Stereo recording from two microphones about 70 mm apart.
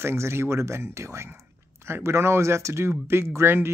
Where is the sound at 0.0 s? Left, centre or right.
Right.